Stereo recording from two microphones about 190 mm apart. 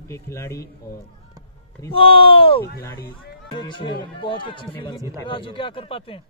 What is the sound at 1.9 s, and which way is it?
Speech, 30° left (ahead or behind).